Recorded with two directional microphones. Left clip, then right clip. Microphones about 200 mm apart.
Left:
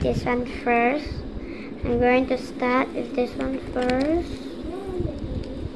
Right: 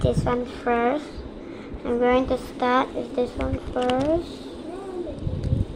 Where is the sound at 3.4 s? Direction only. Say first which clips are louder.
Even; 25° left (ahead or behind).